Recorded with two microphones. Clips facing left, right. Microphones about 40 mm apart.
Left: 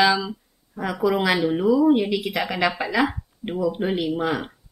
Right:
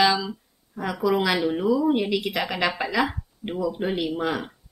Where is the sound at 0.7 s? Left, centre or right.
Centre.